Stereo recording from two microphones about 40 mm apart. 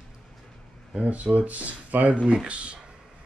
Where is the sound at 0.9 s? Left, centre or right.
Right.